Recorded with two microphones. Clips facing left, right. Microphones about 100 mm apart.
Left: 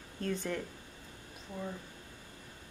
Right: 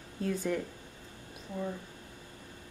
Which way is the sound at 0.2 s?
5° right (ahead or behind).